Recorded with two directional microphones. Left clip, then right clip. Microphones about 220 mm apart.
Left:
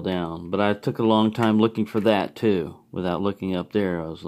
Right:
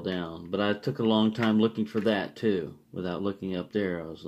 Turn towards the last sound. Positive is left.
turn(degrees=45)  # may be behind; listen again after turning